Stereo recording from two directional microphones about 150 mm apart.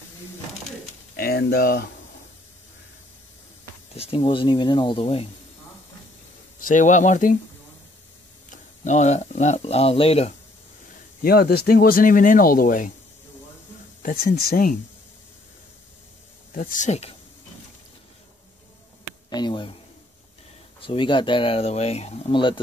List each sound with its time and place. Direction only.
1.1 s speech: 90° left
3.9 s speech: 40° left (ahead or behind)
6.6 s speech: 60° left (ahead or behind)
8.5 s speech: 55° left (ahead or behind)
11.2 s speech: 90° left; by 12.9 s 65° left (ahead or behind)
14.0 s speech: 90° left
16.5 s speech: 65° left (ahead or behind); by 17.2 s 45° left (ahead or behind)
19.3 s speech: 30° left (ahead or behind)
20.8 s speech: 35° left (ahead or behind)